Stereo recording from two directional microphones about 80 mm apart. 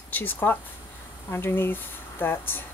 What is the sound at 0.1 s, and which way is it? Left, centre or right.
Speech, left.